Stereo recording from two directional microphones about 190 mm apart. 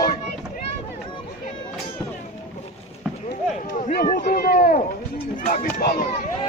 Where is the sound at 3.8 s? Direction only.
50° left (ahead or behind).